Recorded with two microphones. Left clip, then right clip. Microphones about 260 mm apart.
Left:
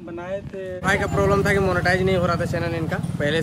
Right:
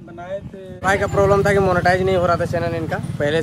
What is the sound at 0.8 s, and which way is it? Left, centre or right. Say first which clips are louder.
Speech: right 4 dB; centre.